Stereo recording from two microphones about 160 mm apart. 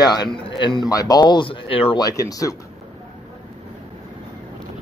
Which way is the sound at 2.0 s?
20° left (ahead or behind).